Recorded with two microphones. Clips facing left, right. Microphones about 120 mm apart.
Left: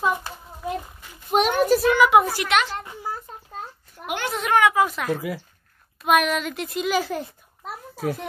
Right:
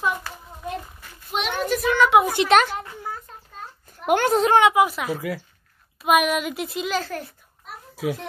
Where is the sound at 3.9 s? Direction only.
45° right (ahead or behind).